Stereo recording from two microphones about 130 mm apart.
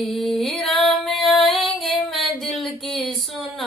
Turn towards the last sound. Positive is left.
turn(degrees=0)  # may be behind; listen again after turning